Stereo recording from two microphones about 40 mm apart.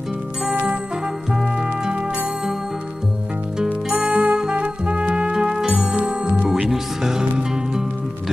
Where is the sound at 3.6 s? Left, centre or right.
Right.